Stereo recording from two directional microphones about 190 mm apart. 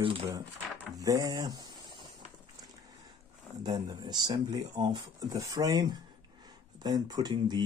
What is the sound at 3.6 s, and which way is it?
Speech, 20° right (ahead or behind).